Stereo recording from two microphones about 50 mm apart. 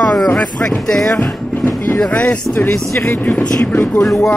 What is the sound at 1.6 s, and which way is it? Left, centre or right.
Speech, left.